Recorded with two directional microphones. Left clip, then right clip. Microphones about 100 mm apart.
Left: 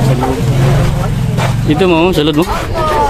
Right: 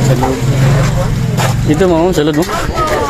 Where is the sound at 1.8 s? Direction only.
15° left (ahead or behind).